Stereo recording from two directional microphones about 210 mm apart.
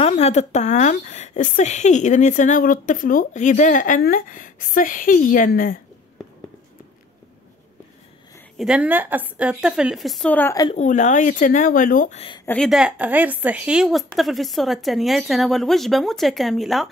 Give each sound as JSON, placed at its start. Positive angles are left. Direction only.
{"t": 0.0, "sound": "a woman's voice", "side_deg": 30}
{"t": 8.5, "sound": "a woman's voice", "side_deg": -5}
{"t": 10.7, "sound": "a woman's voice", "side_deg": 35}
{"t": 12.4, "sound": "a woman's voice", "side_deg": 0}